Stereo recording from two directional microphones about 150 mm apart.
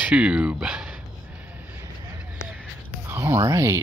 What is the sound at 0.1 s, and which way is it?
Speech, 10° right (ahead or behind).